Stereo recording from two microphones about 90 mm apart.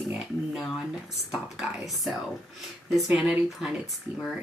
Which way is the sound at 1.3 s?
5° right (ahead or behind).